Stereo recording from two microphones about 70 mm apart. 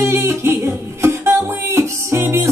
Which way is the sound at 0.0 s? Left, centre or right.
Right.